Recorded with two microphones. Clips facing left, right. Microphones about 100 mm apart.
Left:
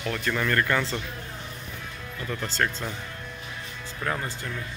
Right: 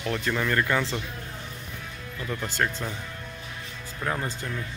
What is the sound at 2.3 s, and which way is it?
Speech, 15° right (ahead or behind).